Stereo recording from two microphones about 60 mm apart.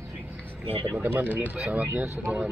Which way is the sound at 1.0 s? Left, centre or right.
Right.